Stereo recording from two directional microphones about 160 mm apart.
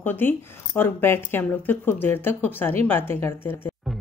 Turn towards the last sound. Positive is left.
turn(degrees=15)  # may be behind; listen again after turning